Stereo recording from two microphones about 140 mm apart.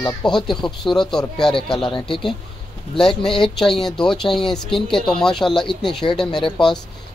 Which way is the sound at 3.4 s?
5° left (ahead or behind).